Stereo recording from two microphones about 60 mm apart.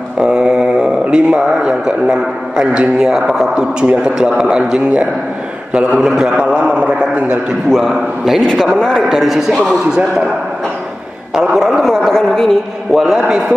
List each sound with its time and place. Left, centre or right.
0.2 s speech: centre
3.5 s a man's voice: centre
6.3 s a man's voice: right
7.7 s a man's voice: centre
8.5 s a man's voice: centre
9.8 s a man's voice: centre
11.3 s a man's voice: centre
11.8 s a man's voice: centre